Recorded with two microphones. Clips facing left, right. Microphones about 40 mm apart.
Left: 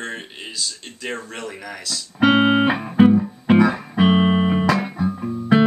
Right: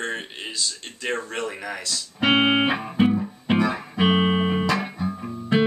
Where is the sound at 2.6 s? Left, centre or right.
Centre.